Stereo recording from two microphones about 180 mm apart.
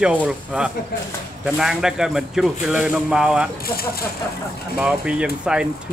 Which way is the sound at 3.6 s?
55° left (ahead or behind).